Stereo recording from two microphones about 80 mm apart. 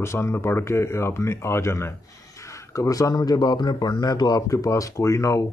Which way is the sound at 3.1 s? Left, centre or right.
Left.